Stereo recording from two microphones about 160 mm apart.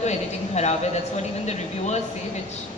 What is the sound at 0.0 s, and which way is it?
A man's voice, 45° left (ahead or behind).